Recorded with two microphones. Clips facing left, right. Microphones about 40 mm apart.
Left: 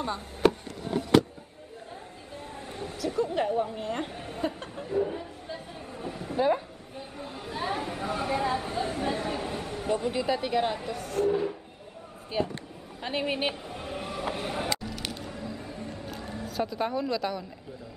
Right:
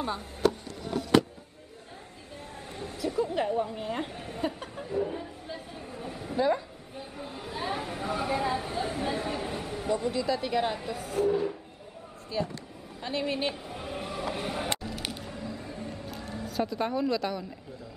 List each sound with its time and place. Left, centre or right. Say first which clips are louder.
2.7 s a sound: even; centre
6.3 s a woman's voice: left 1 dB; centre
7.0 s speech: even; centre
10.1 s a woman's voice: left 1 dB; left
10.4 s speech: left 1 dB; centre
12.3 s a woman's voice: left 2 dB; left
13.7 s vehicle: left 1 dB; centre
14.3 s a sound: left 1 dB; centre